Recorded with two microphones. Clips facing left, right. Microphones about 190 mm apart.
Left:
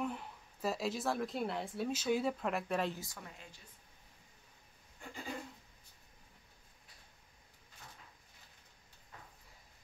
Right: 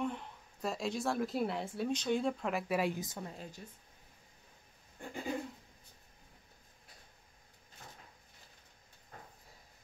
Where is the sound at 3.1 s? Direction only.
35° right (ahead or behind).